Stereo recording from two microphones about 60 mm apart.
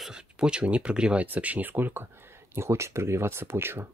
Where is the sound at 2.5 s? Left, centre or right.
Right.